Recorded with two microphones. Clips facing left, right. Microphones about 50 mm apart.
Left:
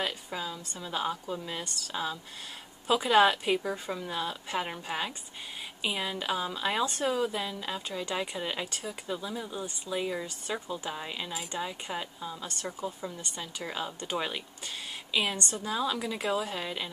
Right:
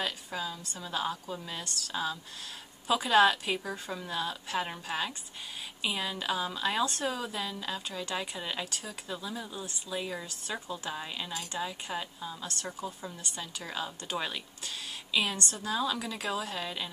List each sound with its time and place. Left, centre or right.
0.0 s a woman's voice: centre